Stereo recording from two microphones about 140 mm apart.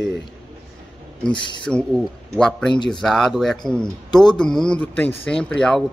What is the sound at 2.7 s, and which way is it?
Speech, 30° left (ahead or behind).